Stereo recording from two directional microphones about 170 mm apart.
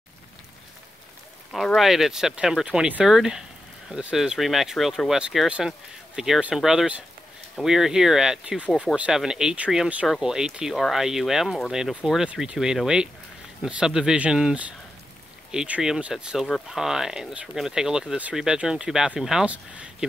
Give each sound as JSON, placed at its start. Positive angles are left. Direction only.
{"t": 1.5, "sound": "speech", "side_deg": 0}